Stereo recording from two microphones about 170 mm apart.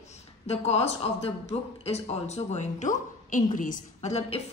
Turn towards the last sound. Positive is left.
turn(degrees=40)  # may be behind; listen again after turning